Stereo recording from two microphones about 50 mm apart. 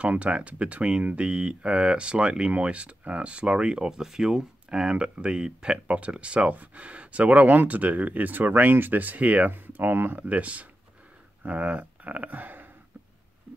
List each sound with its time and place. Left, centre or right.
0.0 s speech: right
9.7 s speech: right
10.2 s speech: right